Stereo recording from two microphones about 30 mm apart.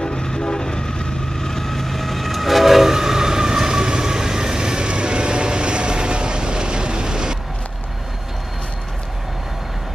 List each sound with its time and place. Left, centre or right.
0.0 s train: left; by 7.3 s right